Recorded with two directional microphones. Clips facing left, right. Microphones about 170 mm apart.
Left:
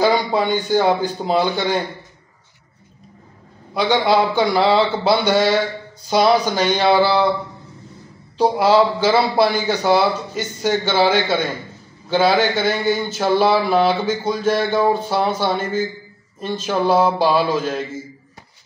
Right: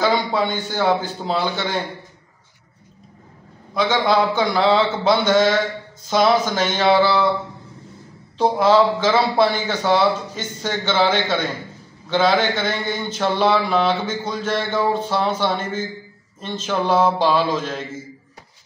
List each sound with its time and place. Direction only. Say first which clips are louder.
0.0 s a man's voice: left 2 dB; 15° left (ahead or behind)
3.8 s a man's voice: left 2 dB; 10° left (ahead or behind)
8.4 s a man's voice: left 1 dB; 10° left (ahead or behind)